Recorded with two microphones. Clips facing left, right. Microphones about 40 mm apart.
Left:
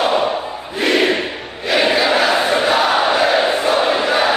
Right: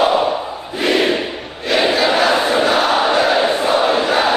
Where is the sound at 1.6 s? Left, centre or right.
Centre.